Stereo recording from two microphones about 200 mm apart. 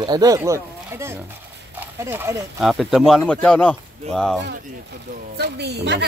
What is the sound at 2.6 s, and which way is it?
Speech, centre (ahead or behind).